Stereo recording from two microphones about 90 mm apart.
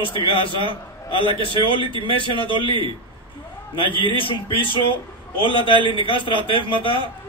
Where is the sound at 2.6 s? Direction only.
65° right (ahead or behind).